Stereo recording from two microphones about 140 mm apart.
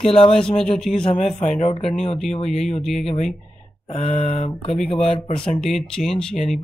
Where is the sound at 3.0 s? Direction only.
55° left (ahead or behind).